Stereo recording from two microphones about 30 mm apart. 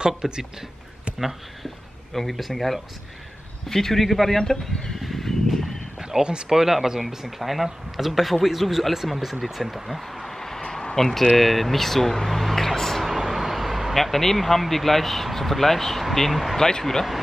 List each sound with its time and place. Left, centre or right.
0.2 s speech: centre
2.1 s speech: centre
4.4 s speech: centre
5.0 s a sound: centre
6.1 s speech: centre
7.2 s speech: centre
10.2 s a sound: centre
11.0 s speech: centre
12.3 s a sound: centre
13.2 s vehicle: centre
13.9 s speech: centre
16.5 s speech: centre